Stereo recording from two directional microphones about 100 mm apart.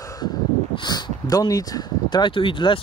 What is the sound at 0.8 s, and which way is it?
Speech, 45° left (ahead or behind).